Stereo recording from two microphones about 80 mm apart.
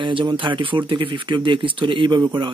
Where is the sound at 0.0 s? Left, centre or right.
Right.